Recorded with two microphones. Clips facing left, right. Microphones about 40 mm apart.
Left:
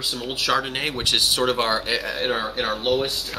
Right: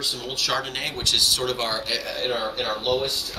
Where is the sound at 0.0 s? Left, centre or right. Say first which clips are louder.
Left 2 dB; centre.